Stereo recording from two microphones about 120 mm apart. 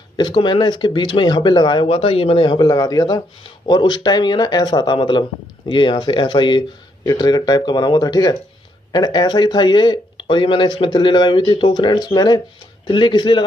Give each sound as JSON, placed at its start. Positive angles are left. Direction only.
{"t": 0.2, "sound": "speech", "side_deg": 40}